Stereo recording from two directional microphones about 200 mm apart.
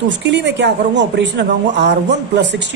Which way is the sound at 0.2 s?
60° right (ahead or behind).